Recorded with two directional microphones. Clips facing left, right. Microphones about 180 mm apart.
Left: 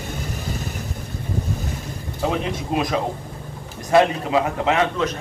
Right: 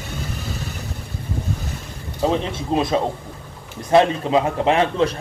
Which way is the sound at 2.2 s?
30° right (ahead or behind).